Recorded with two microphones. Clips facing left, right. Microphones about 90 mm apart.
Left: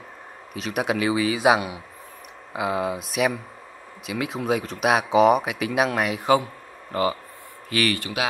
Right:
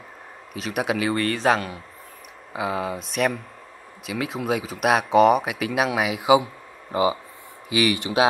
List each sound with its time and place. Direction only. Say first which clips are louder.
0.5 s speech: even; centre (ahead or behind)
6.3 s a sound: right 4 dB; 15° right (ahead or behind)
7.7 s speech: right 2 dB; 15° right (ahead or behind)